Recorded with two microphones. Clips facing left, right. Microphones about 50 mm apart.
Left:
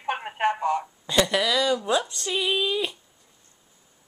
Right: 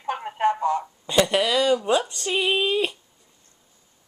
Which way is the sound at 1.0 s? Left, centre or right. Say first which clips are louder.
Right 2 dB; centre.